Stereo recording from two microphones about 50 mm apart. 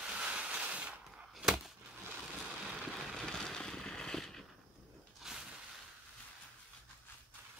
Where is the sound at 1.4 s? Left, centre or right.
Centre.